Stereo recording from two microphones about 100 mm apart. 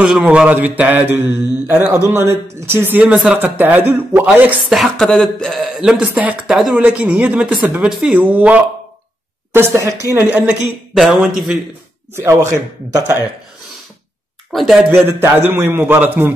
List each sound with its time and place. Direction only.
0.0 s a man's voice: 10° right (ahead or behind)
4.6 s a man's voice: centre (ahead or behind)
9.5 s a man's voice: 25° right (ahead or behind)
10.2 s a man's voice: 15° right (ahead or behind)
14.5 s speech: centre (ahead or behind)
14.9 s a man's voice: 20° right (ahead or behind)